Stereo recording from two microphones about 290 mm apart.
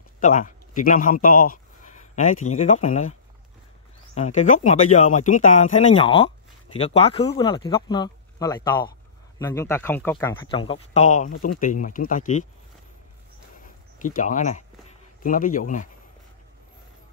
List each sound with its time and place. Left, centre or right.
0.2 s speech: left
14.0 s speech: left